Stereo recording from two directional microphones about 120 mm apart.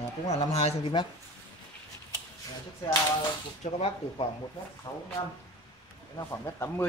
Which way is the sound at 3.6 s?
55° left (ahead or behind).